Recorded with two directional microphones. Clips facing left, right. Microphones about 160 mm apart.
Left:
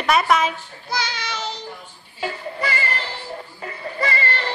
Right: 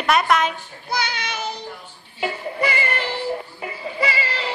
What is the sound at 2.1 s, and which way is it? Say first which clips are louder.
Music: right 3 dB; 10° right (ahead or behind).